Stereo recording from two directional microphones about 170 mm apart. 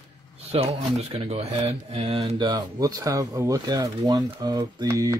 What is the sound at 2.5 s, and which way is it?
Speech, 20° right (ahead or behind).